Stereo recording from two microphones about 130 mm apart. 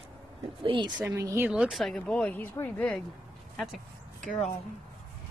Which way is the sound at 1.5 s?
Centre (ahead or behind).